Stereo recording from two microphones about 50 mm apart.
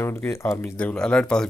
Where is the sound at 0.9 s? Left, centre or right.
Centre.